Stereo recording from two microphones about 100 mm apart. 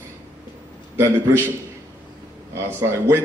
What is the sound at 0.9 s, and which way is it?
Speech, 25° right (ahead or behind).